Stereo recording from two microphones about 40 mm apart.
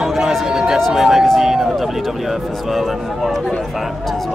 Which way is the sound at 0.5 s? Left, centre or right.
Centre.